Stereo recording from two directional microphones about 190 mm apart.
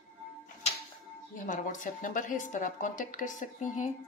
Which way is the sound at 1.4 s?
40° left (ahead or behind).